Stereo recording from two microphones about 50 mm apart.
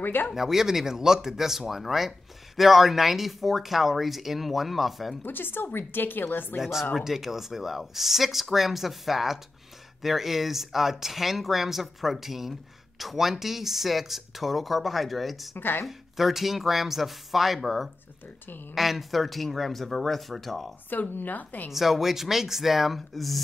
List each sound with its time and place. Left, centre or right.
0.0 s speech: left
0.3 s speech: centre
5.2 s a woman's voice: left
6.6 s speech: centre
15.5 s a woman's voice: left
16.2 s speech: centre
20.9 s speech: left
21.7 s speech: centre